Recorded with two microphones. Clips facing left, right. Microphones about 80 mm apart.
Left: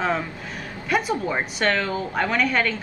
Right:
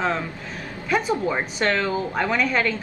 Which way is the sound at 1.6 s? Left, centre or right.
Centre.